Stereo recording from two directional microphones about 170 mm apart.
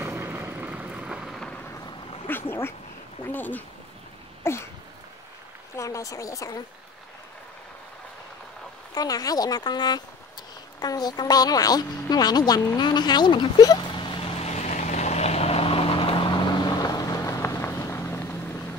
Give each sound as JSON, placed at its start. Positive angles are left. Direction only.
{"t": 0.2, "sound": "thunder", "side_deg": -10}
{"t": 2.3, "sound": "speech", "side_deg": 10}
{"t": 4.4, "sound": "a sound", "side_deg": 15}
{"t": 5.8, "sound": "speech", "side_deg": 20}
{"t": 8.9, "sound": "speech", "side_deg": 20}
{"t": 10.8, "sound": "a sound", "side_deg": 25}